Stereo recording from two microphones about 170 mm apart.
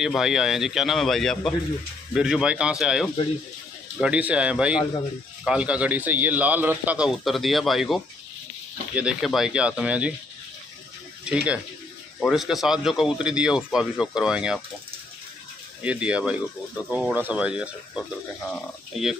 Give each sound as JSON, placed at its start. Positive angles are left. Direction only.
{"t": 0.0, "sound": "a man's voice", "side_deg": 0}
{"t": 11.3, "sound": "speech", "side_deg": -5}
{"t": 15.8, "sound": "a man's voice", "side_deg": -5}